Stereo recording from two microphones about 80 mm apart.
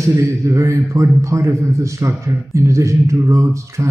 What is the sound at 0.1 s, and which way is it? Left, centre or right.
A man's voice, right.